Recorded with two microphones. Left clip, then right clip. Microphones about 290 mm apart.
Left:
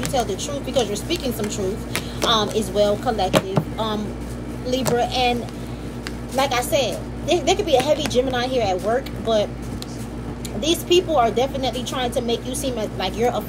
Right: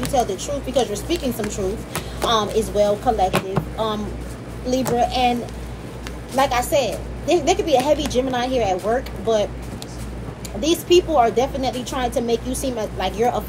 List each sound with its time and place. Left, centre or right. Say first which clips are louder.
0.0 s speech: right 2 dB; centre
6.3 s speech: right 2 dB; centre
10.6 s speech: right 2 dB; centre